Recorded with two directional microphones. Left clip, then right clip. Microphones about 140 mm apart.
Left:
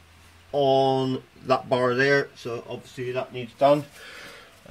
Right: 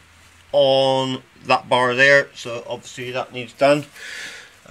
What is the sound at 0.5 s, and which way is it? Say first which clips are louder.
Speech: right 5 dB; 5° right (ahead or behind).